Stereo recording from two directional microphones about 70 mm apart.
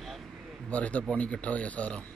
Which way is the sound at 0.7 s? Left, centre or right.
Centre.